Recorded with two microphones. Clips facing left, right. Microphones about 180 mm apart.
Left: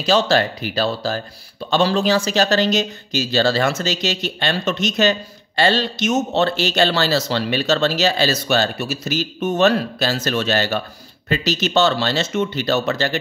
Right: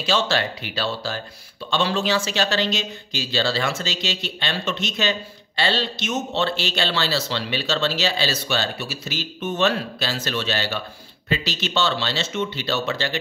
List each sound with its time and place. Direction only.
0.0 s a man's voice: 40° left (ahead or behind)